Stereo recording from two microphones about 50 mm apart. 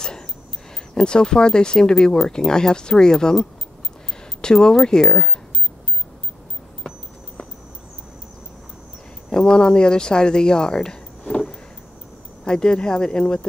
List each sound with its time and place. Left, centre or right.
0.9 s speech: centre
9.3 s speech: centre
12.4 s speech: centre